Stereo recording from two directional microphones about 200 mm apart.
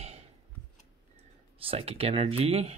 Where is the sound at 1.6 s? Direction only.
30° right (ahead or behind).